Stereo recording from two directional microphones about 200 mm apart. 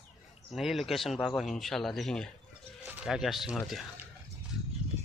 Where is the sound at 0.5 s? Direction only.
Centre (ahead or behind).